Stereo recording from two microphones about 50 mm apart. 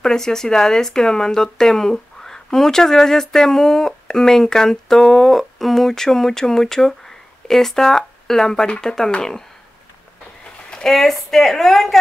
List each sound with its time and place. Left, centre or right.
0.0 s speech: centre
10.9 s a woman's voice: centre